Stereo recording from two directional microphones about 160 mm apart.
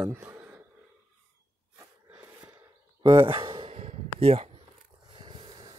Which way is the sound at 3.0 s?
30° right (ahead or behind).